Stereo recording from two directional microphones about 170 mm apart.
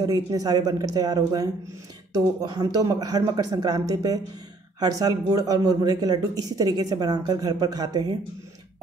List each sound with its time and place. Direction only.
0.0 s speech: 20° right (ahead or behind)